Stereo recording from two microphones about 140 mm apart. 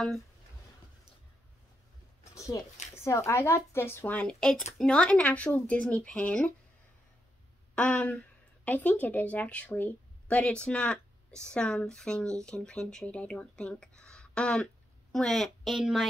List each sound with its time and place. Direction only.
2.3 s a woman's voice: 25° left (ahead or behind)
7.7 s a woman's voice: 10° left (ahead or behind)